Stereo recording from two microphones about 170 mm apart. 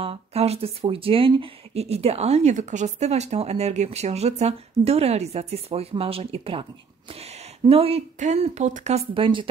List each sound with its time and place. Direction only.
0.0 s speech: 35° right (ahead or behind)